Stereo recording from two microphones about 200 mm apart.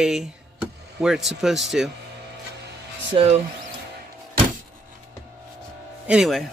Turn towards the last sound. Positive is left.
turn(degrees=0)  # may be behind; listen again after turning